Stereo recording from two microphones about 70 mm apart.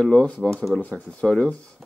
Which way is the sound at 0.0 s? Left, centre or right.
Centre.